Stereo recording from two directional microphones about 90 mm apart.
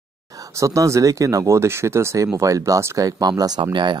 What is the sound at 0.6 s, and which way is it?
Speech, 35° right (ahead or behind).